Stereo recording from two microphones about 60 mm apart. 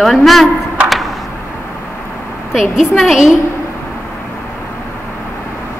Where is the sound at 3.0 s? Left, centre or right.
Centre.